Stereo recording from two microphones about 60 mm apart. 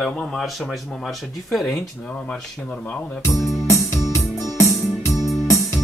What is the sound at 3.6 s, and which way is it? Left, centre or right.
Music, left.